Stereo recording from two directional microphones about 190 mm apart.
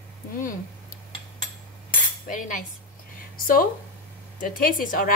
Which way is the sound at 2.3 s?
45° left (ahead or behind).